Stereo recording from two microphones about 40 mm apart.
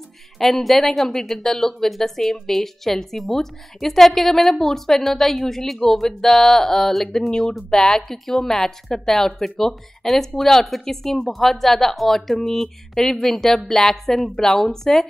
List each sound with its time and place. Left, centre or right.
0.4 s a woman's voice: centre
7.2 s a woman's voice: centre